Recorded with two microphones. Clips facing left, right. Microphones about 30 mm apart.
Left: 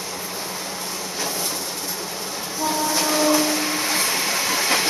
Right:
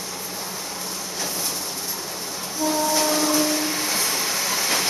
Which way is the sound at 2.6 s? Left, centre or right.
Centre.